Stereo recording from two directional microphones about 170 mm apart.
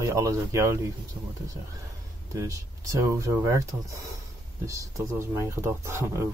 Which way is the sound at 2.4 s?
20° right (ahead or behind).